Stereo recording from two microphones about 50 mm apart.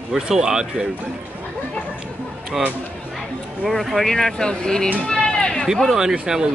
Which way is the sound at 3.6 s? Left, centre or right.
Centre.